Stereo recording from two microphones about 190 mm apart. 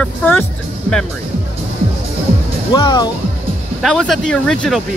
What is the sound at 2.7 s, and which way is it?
Speech, 25° left (ahead or behind).